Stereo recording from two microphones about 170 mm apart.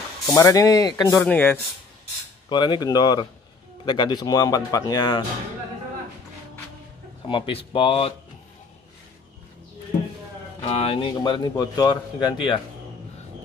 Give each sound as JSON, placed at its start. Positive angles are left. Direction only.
{"t": 0.3, "sound": "speech", "side_deg": 15}
{"t": 2.5, "sound": "speech", "side_deg": 25}
{"t": 7.2, "sound": "speech", "side_deg": 30}
{"t": 10.6, "sound": "speech", "side_deg": 35}